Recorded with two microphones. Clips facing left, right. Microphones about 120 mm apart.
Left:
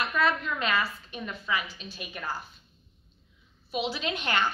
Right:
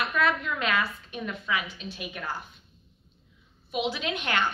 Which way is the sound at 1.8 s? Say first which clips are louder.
Right 5 dB; 60° right (ahead or behind).